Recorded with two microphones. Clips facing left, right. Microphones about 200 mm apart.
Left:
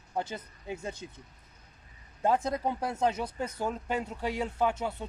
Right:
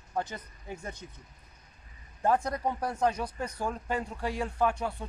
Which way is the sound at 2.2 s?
20° left (ahead or behind).